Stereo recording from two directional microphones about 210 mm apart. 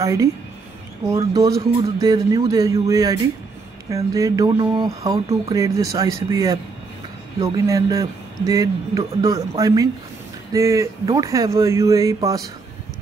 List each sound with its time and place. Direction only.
0.0 s speech: 15° right (ahead or behind)